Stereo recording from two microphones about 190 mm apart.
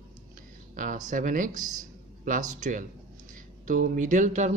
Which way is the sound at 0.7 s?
45° right (ahead or behind).